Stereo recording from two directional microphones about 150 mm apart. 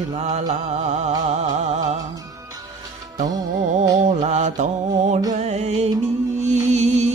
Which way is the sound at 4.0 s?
55° right (ahead or behind).